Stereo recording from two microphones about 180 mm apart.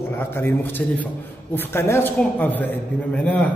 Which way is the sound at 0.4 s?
10° left (ahead or behind).